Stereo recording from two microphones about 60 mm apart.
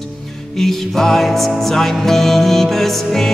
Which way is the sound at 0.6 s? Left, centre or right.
Centre.